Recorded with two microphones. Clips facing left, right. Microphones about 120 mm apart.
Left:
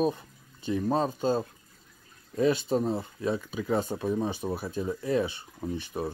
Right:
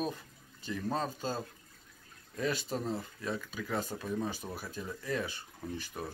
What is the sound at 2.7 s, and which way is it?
Speech, 55° left (ahead or behind).